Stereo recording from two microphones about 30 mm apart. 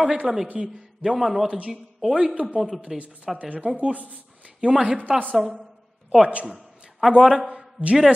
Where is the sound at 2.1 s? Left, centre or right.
Right.